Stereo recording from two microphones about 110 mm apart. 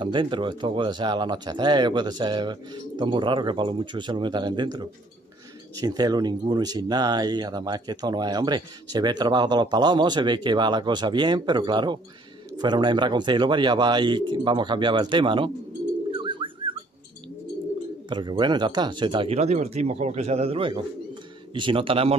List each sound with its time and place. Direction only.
0.0 s speech: 45° right (ahead or behind)
16.2 s bird: 50° right (ahead or behind)
18.4 s speech: 40° right (ahead or behind)
19.2 s a man's voice: 75° right (ahead or behind); by 22.1 s 55° right (ahead or behind)